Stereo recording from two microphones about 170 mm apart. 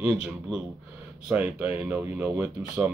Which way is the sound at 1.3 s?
10° right (ahead or behind).